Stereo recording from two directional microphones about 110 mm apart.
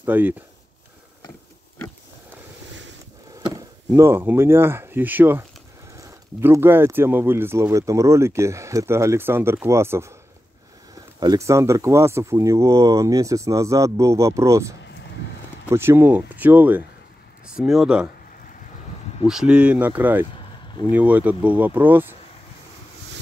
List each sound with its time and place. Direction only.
0.0 s speech: 15° right (ahead or behind)
3.4 s speech: 30° right (ahead or behind)
5.9 s speech: 30° right (ahead or behind)
11.1 s speech: 35° right (ahead or behind); by 16.8 s 15° right (ahead or behind)
17.6 s speech: 5° right (ahead or behind)
19.2 s speech: 5° right (ahead or behind)